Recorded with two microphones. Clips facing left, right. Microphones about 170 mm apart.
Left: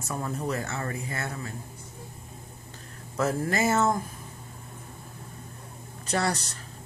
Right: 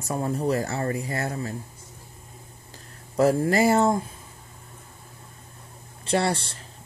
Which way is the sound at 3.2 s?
30° right (ahead or behind).